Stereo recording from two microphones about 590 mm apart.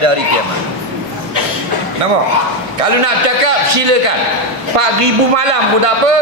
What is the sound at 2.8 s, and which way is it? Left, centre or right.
A man's voice, right.